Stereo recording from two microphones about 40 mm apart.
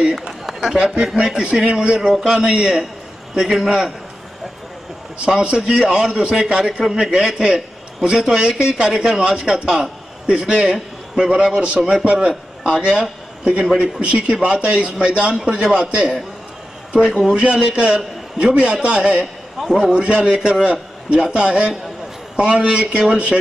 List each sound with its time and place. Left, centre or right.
0.5 s a sound: centre
1.2 s a man's voice: centre
5.2 s a man's voice: right
9.5 s a man's voice: centre; by 16.1 s right
17.1 s a man's voice: centre
17.6 s a man's voice: right